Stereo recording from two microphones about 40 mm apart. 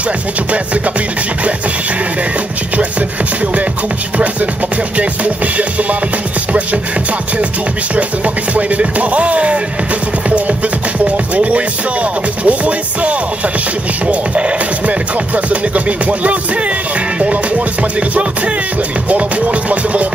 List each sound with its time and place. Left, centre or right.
4.9 s music: right
8.5 s music: right
11.1 s music: right
14.9 s music: right
19.0 s music: right